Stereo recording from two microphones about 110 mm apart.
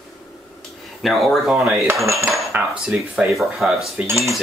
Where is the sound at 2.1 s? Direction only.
25° right (ahead or behind).